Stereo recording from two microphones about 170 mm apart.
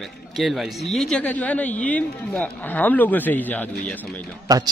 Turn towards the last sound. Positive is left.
turn(degrees=-20)  # may be behind; listen again after turning